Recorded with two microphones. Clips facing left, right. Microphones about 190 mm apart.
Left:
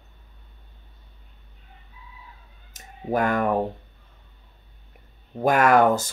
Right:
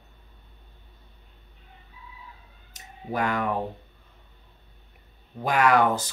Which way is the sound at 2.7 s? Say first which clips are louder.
Left 6 dB; 50° left (ahead or behind).